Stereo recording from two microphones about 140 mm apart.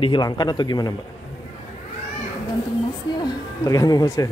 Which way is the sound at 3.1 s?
30° left (ahead or behind).